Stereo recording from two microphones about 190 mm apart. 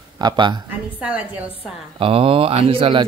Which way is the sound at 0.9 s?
5° right (ahead or behind).